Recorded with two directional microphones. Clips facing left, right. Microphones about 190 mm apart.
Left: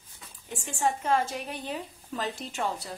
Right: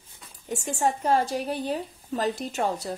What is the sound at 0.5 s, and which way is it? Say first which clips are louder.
A woman's voice: right 3 dB; 40° right (ahead or behind).